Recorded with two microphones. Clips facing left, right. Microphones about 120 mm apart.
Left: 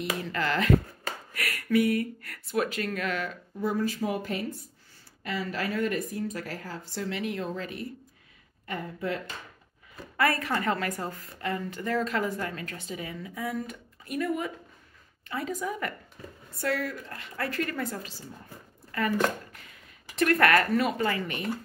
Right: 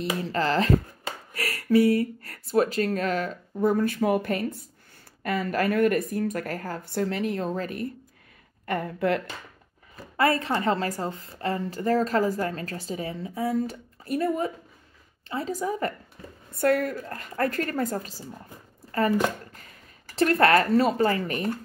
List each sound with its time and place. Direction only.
0.0 s a woman's voice: 30° right (ahead or behind)
8.6 s speech: 65° right (ahead or behind)
10.1 s a woman's voice: 25° right (ahead or behind)
16.5 s a woman's voice: 50° right (ahead or behind)